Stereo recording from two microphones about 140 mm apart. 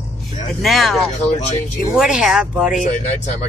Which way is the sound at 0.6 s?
Centre (ahead or behind).